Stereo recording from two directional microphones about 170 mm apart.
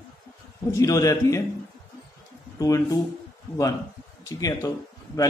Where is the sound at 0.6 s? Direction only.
20° left (ahead or behind).